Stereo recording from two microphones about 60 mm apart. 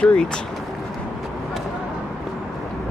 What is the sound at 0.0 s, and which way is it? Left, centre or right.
Speech, centre.